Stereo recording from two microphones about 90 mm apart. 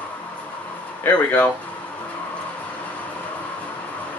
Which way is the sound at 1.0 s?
20° left (ahead or behind).